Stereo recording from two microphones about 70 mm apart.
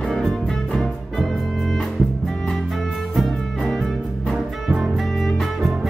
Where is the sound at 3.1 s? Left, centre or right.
Centre.